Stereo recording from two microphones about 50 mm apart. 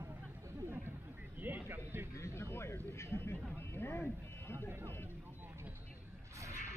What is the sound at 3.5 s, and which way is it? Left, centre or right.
Speech, left.